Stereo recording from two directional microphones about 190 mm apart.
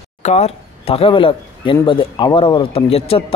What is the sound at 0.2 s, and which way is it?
Speech, 35° left (ahead or behind).